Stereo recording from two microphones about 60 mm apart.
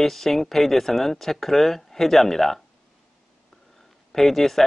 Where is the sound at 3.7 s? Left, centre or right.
Centre.